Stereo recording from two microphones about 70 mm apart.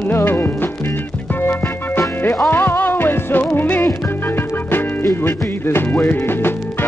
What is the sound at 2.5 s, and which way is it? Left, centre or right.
Music, left.